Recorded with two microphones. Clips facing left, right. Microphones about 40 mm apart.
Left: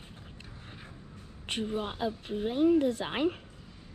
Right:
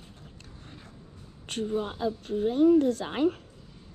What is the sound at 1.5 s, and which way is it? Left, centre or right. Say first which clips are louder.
Speech: right 3 dB; centre.